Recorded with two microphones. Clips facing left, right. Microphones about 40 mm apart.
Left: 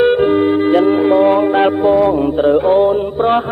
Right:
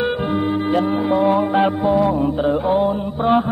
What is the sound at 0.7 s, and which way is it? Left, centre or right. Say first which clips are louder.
Music: left 6 dB; left.